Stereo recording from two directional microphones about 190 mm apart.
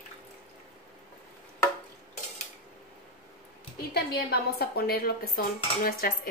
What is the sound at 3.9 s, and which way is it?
Dishes, 55° left (ahead or behind).